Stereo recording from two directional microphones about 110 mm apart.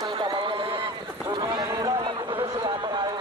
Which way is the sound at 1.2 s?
45° right (ahead or behind).